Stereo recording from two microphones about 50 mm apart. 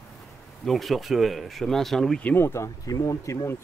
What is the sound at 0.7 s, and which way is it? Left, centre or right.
Speech, centre.